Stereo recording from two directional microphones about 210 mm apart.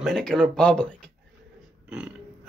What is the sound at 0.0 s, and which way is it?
Speech, centre (ahead or behind).